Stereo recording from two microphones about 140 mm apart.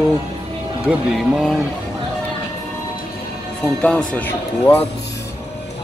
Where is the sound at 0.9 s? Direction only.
5° right (ahead or behind).